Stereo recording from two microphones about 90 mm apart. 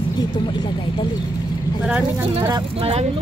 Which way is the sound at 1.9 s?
20° right (ahead or behind).